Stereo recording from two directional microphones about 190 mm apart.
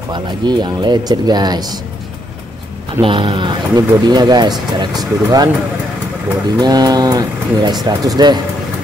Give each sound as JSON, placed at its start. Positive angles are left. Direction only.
{"t": 0.1, "sound": "speech", "side_deg": -25}
{"t": 3.0, "sound": "speech", "side_deg": -30}
{"t": 6.6, "sound": "speech", "side_deg": -20}